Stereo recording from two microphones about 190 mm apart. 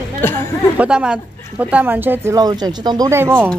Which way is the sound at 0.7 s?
5° right (ahead or behind).